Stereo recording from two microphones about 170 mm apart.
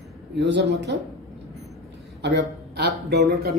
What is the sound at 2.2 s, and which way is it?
A man's voice, 75° right (ahead or behind).